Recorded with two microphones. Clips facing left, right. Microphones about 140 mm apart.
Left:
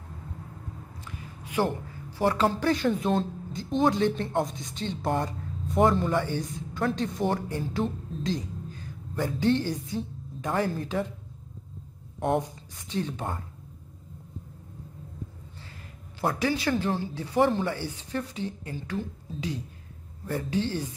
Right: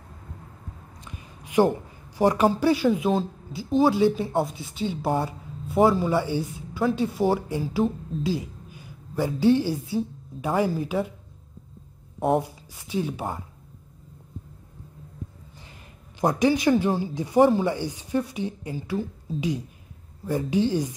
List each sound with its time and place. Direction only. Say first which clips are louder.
1.0 s a sound: right 1 dB; 20° right (ahead or behind)
2.1 s speech: right 4 dB; 15° right (ahead or behind)
12.2 s speech: right 3 dB; 5° right (ahead or behind)
16.2 s speech: right 6 dB; 15° right (ahead or behind)